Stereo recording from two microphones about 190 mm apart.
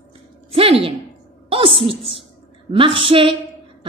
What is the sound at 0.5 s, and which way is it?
A woman's voice, 30° right (ahead or behind).